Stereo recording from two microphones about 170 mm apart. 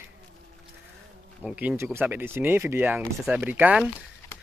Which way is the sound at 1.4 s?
5° right (ahead or behind).